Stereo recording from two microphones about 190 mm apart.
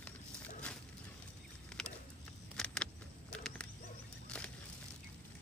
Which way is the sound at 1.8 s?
5° left (ahead or behind).